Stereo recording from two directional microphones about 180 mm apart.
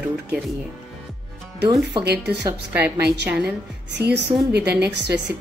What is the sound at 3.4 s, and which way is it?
A woman's voice, 70° right (ahead or behind).